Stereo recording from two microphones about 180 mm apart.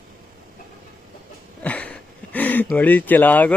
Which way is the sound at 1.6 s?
10° left (ahead or behind).